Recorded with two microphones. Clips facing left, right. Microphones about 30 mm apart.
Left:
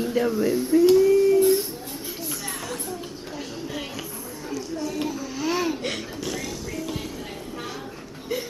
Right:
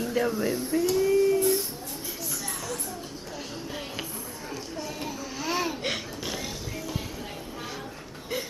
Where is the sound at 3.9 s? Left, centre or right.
Centre.